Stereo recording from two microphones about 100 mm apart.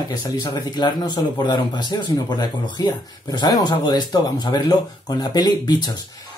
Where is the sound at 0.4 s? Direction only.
45° left (ahead or behind).